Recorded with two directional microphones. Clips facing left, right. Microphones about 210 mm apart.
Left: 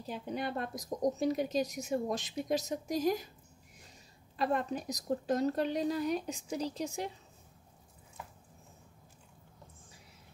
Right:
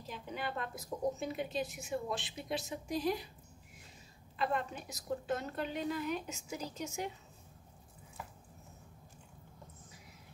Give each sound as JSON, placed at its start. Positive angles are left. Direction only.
{"t": 0.0, "sound": "a woman's voice", "side_deg": 35}
{"t": 4.4, "sound": "a woman's voice", "side_deg": 40}